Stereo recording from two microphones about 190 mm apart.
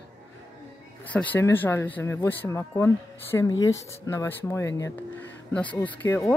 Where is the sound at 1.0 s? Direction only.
10° left (ahead or behind).